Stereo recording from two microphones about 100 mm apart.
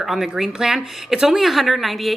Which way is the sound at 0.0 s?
5° right (ahead or behind).